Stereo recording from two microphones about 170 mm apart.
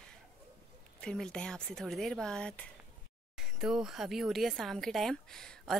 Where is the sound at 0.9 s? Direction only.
5° left (ahead or behind).